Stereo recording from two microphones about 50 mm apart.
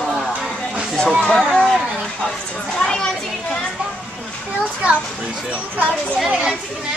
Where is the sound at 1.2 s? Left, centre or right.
Centre.